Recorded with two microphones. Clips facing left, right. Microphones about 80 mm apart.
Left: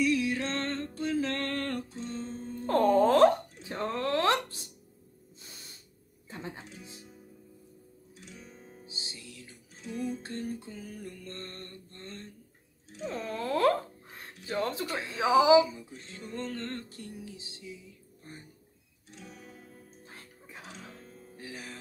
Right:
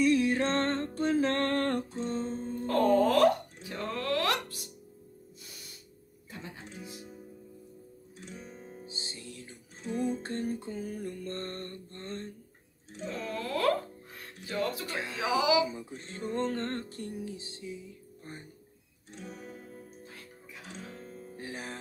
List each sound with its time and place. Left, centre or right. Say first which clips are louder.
0.0 s music: right 3 dB; right
2.6 s a sound: left 1 dB; left
3.6 s music: left 2 dB; left
5.4 s spray: left 3 dB; left
6.3 s music: left 3 dB; left
8.2 s music: right 4 dB; right
13.0 s music: left 1 dB; left
15.1 s a sound: left 6 dB; left
15.7 s music: right 4 dB; right
20.1 s music: right 1 dB; left
20.7 s music: right 4 dB; right